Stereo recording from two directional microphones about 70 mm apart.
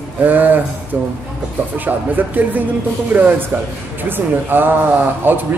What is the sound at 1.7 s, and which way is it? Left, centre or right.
A man's voice, right.